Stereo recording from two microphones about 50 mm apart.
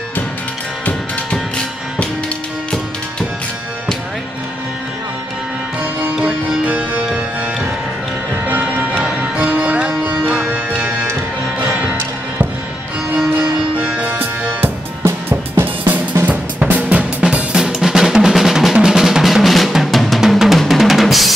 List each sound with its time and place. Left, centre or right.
6.2 s music: right
8.5 s music: right
9.0 s music: right
13.7 s music: right
15.2 s drum kit: right
16.9 s drum: right; by 21.3 s centre